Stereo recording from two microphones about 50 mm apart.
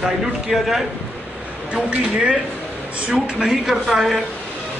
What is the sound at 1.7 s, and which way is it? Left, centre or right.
Speech, right.